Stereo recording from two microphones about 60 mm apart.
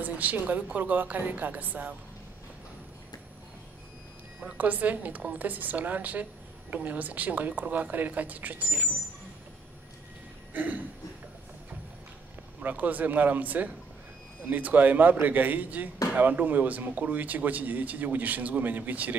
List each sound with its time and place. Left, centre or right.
0.0 s speech: right
4.6 s speech: right
10.5 s a sound: right
12.6 s speech: right